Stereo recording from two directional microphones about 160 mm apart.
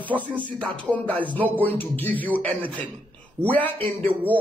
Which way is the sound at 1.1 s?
30° right (ahead or behind).